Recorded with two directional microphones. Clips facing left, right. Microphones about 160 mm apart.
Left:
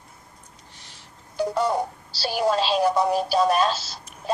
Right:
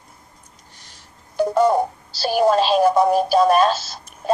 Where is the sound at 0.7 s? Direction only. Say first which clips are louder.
Even; 45° right (ahead or behind).